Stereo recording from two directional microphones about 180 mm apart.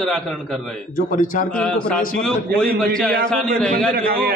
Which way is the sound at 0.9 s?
50° left (ahead or behind).